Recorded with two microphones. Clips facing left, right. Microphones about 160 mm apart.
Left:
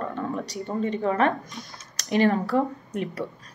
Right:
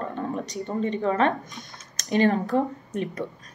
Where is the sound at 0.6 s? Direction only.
20° right (ahead or behind).